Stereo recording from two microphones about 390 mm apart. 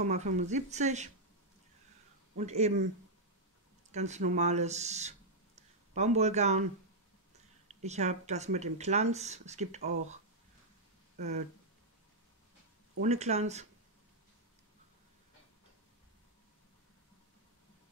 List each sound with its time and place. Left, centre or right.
0.0 s speech: centre
2.3 s speech: centre
3.9 s speech: centre
7.6 s speech: centre
11.1 s speech: centre
13.0 s speech: centre